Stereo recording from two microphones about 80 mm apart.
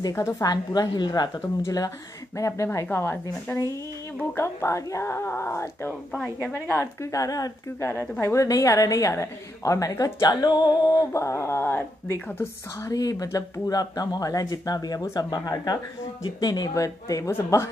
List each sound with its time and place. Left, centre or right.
0.1 s speech: left
0.5 s a woman's voice: left
2.3 s speech: left
7.8 s speech: left
8.5 s speech: left
10.4 s speech: left
12.8 s a woman's voice: left
16.7 s speech: left